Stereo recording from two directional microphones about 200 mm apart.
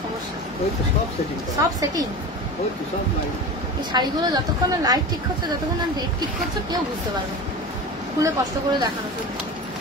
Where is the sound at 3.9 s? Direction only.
20° right (ahead or behind).